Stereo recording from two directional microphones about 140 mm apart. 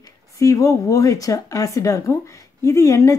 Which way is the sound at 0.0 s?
25° left (ahead or behind).